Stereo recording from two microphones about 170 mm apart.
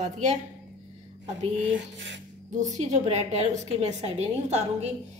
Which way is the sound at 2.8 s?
40° right (ahead or behind).